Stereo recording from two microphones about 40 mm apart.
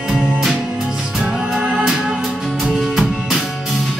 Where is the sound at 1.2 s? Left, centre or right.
Centre.